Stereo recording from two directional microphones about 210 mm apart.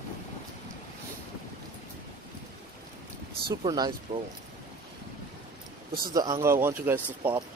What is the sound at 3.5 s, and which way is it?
Speech, 20° right (ahead or behind).